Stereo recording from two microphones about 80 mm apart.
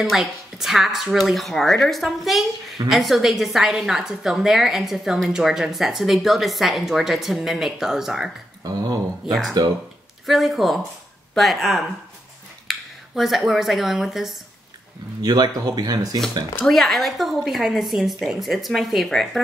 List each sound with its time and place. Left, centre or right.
0.1 s a woman's voice: centre
15.2 s speech: right
16.6 s a woman's voice: centre